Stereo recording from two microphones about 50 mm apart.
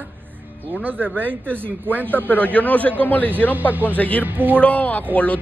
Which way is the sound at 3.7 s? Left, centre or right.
Right.